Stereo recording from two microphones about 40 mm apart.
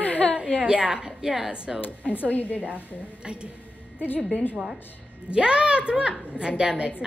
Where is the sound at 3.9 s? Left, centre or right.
Left.